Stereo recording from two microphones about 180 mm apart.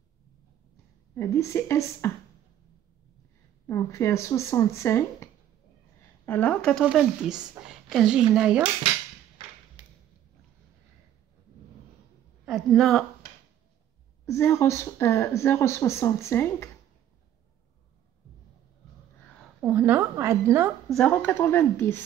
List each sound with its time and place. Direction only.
1.1 s speech: 15° left (ahead or behind)
3.6 s speech: 15° left (ahead or behind); by 8.6 s 5° right (ahead or behind)
9.4 s a sound: 25° right (ahead or behind)
12.4 s a woman's voice: centre (ahead or behind)
14.2 s speech: 15° left (ahead or behind)
19.6 s a woman's voice: 10° right (ahead or behind)
20.9 s speech: 5° left (ahead or behind)